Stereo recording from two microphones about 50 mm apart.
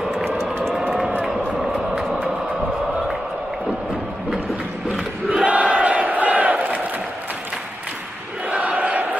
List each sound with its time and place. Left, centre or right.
4.9 s crowd: centre
5.5 s battle cry: right
8.5 s a sound: right